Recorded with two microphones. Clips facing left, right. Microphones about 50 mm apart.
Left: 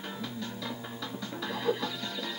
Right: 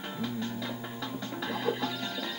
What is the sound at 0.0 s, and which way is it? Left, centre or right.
Music, centre.